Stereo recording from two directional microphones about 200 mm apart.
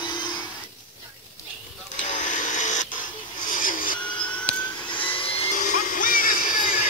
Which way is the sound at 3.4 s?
40° left (ahead or behind).